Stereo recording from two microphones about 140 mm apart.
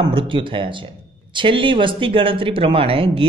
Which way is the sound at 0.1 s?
35° right (ahead or behind).